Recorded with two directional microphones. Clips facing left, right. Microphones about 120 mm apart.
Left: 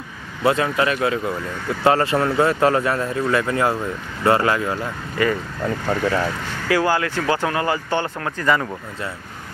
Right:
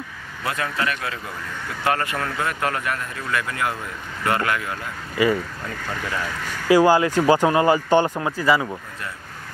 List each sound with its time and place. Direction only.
0.4 s speech: 25° left (ahead or behind)
5.1 s speech: 10° right (ahead or behind)
5.9 s speech: 35° left (ahead or behind)
6.4 s speech: 15° right (ahead or behind)